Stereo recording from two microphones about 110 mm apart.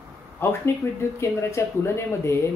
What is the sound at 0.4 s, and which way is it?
Speech, 20° left (ahead or behind).